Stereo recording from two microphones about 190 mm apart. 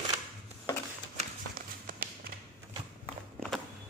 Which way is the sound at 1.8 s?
50° right (ahead or behind).